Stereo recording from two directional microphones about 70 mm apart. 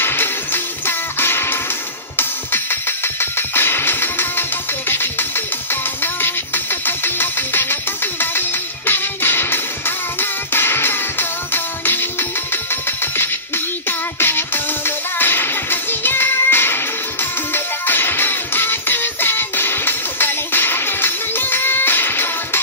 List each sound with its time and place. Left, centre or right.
0.0 s music: left
6.2 s music: left